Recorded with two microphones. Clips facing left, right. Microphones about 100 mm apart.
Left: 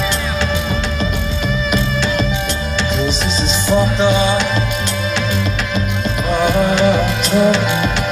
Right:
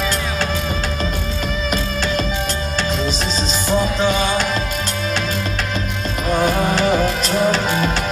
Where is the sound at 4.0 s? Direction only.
30° left (ahead or behind).